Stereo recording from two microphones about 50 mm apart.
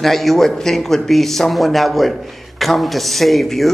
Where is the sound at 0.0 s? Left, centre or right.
Centre.